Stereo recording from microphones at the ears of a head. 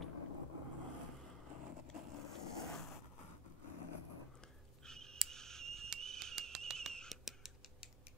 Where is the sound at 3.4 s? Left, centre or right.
Left.